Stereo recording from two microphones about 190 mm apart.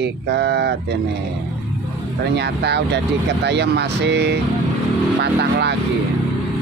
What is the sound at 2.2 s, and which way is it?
Speech, 60° right (ahead or behind).